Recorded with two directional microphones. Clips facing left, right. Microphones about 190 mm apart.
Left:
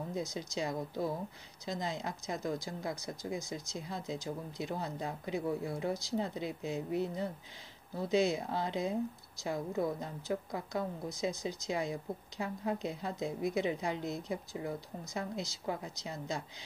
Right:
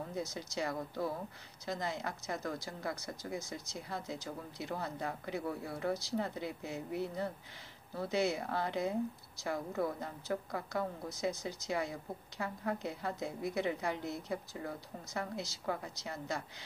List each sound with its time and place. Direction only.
0.1 s speech: 15° left (ahead or behind)